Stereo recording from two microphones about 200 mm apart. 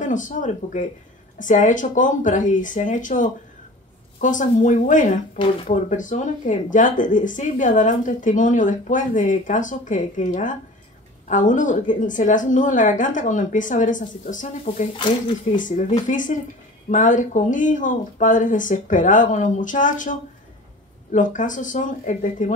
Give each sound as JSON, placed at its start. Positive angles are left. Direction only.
{"t": 0.0, "sound": "speech", "side_deg": 40}
{"t": 15.0, "sound": "speech", "side_deg": 25}
{"t": 15.5, "sound": "speech", "side_deg": 40}